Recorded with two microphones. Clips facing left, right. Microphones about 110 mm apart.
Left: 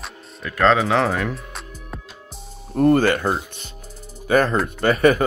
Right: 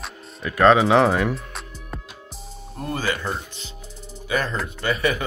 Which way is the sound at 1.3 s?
Centre (ahead or behind).